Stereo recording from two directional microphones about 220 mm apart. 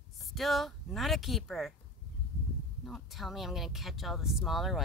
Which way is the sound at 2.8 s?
Centre (ahead or behind).